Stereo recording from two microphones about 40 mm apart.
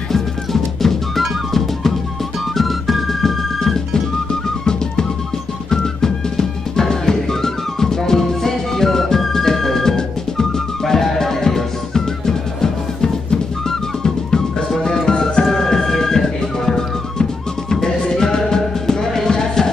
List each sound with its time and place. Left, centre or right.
0.1 s music: centre
15.4 s music: centre